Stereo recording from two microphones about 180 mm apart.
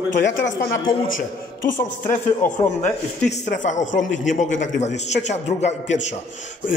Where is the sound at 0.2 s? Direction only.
70° left (ahead or behind).